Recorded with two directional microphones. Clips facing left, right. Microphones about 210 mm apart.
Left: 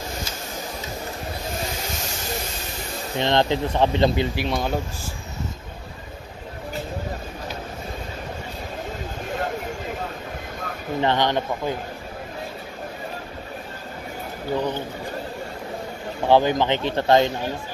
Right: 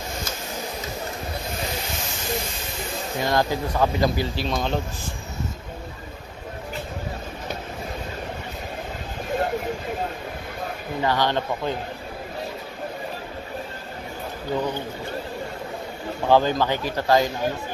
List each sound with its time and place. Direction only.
3.2 s speech: 25° left (ahead or behind)
11.0 s speech: 20° left (ahead or behind)
16.3 s speech: 15° left (ahead or behind)